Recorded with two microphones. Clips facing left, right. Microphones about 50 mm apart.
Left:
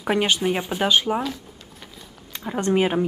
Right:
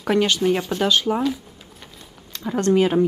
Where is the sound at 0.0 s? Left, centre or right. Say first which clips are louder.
Right 2 dB; centre.